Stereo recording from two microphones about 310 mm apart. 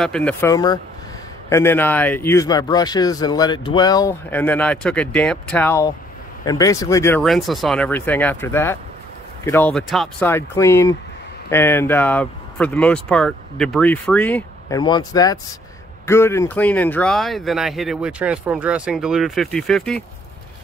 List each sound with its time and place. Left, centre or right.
0.0 s speech: centre